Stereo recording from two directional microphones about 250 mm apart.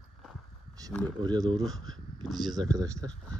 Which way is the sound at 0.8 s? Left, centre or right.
Centre.